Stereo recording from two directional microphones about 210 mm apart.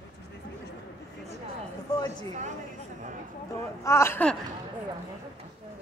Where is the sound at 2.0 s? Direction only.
35° right (ahead or behind).